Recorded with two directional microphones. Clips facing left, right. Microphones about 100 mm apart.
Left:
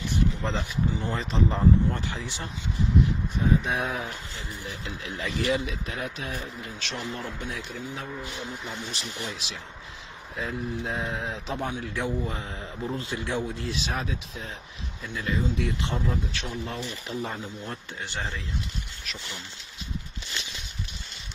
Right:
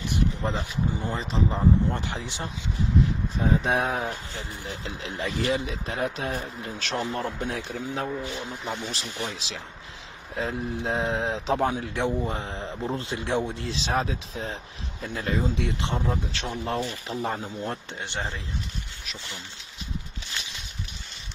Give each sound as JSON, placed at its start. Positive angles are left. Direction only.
{"t": 0.5, "sound": "speech", "side_deg": -15}
{"t": 1.1, "sound": "speech", "side_deg": 0}
{"t": 1.9, "sound": "a man's voice", "side_deg": -20}
{"t": 3.3, "sound": "speech", "side_deg": -30}
{"t": 8.5, "sound": "a man's voice", "side_deg": -20}
{"t": 10.3, "sound": "a man's voice", "side_deg": -30}
{"t": 11.9, "sound": "a man's voice", "side_deg": -25}
{"t": 18.0, "sound": "a man's voice", "side_deg": -20}